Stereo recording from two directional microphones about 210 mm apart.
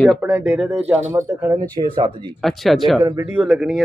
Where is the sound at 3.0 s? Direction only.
10° right (ahead or behind).